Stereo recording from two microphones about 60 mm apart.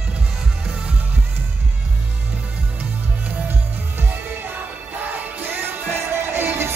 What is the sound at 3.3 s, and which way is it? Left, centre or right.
Music, right.